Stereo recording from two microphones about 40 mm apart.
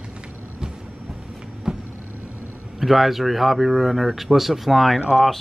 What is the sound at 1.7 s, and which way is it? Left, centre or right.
Vehicle, centre.